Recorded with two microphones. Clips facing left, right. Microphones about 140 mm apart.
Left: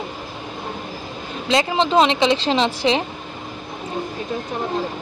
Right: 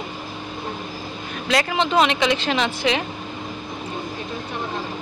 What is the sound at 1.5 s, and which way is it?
Speech, 25° left (ahead or behind).